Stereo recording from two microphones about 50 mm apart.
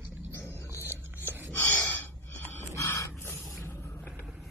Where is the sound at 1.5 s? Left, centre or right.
Left.